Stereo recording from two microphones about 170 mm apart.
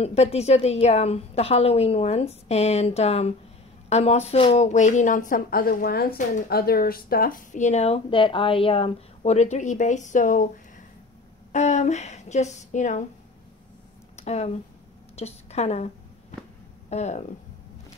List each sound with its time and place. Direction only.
0.0 s a woman's voice: 40° left (ahead or behind)
11.5 s a woman's voice: 40° left (ahead or behind)
14.1 s a sound: 40° left (ahead or behind)
16.9 s a woman's voice: 40° left (ahead or behind)